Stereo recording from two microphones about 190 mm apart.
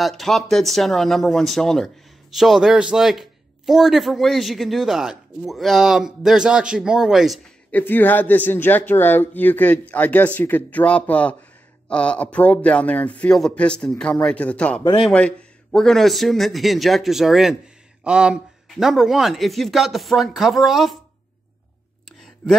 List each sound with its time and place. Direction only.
0.0 s a man's voice: centre (ahead or behind)
14.8 s speech: 25° left (ahead or behind)
15.0 s a man's voice: 5° left (ahead or behind)